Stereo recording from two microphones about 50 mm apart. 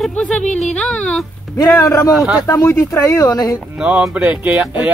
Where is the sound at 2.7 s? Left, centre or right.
Left.